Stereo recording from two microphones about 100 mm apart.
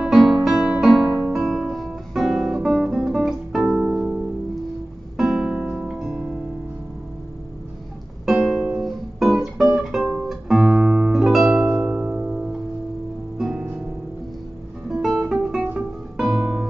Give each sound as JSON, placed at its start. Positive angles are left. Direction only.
{"t": 0.0, "sound": "music", "side_deg": 0}
{"t": 8.3, "sound": "music", "side_deg": 0}
{"t": 8.8, "sound": "guitar", "side_deg": 0}
{"t": 9.8, "sound": "music", "side_deg": 0}
{"t": 10.2, "sound": "guitar", "side_deg": 0}
{"t": 11.7, "sound": "music", "side_deg": -15}
{"t": 14.9, "sound": "guitar", "side_deg": 0}
{"t": 16.2, "sound": "music", "side_deg": 0}